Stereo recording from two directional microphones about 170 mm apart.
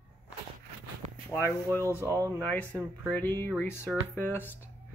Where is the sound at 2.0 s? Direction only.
15° right (ahead or behind).